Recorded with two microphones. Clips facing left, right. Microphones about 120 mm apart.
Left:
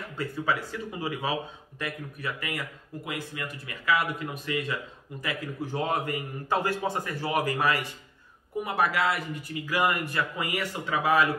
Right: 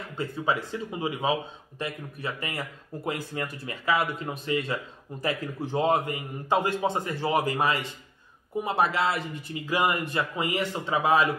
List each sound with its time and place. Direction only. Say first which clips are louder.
0.2 s a man's voice: right 1 dB; 20° right (ahead or behind)